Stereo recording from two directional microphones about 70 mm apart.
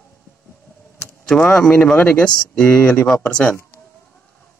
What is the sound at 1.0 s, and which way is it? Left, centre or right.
Vehicle, centre.